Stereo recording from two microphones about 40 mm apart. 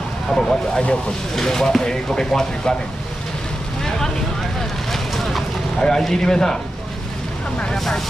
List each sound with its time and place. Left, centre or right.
0.3 s speech: centre
5.1 s vehicle: centre
5.8 s speech: centre
7.7 s speech: centre